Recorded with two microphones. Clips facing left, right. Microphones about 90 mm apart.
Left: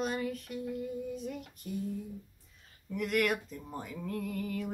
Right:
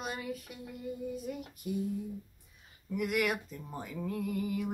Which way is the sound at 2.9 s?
5° right (ahead or behind).